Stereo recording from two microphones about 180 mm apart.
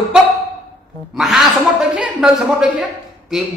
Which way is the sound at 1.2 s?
Centre (ahead or behind).